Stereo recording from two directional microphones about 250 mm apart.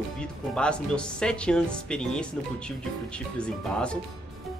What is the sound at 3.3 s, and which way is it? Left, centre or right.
Speech, centre.